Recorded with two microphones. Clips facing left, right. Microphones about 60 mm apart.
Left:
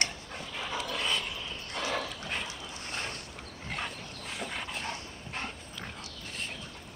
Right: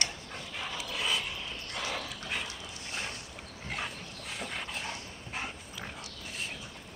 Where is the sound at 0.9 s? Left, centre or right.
Centre.